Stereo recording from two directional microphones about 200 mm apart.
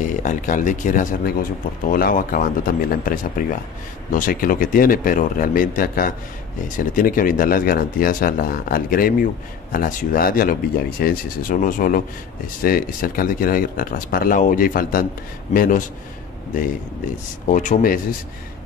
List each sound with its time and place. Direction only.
0.0 s speech: 40° left (ahead or behind)
17.5 s speech: 40° left (ahead or behind)